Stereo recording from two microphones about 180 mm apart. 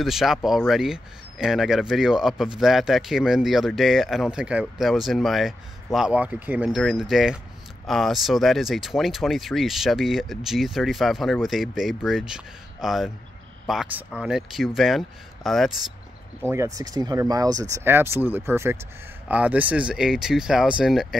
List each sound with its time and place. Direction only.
0.0 s speech: centre (ahead or behind)
16.4 s speech: 15° right (ahead or behind)